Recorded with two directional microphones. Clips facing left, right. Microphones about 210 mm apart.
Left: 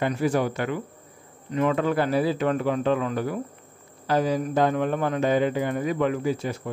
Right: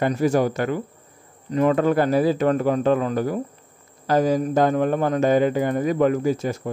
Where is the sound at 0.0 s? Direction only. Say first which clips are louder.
Right 4 dB; 40° right (ahead or behind).